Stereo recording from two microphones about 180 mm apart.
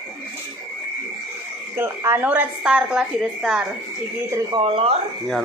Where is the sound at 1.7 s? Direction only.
15° right (ahead or behind).